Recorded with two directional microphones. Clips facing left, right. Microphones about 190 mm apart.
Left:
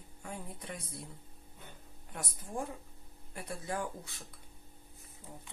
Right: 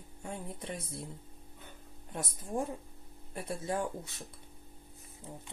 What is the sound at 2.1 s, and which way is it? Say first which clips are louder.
Speech: right 4 dB; 25° right (ahead or behind).